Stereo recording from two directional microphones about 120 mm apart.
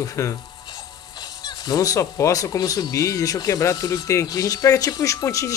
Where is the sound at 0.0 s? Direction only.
25° left (ahead or behind).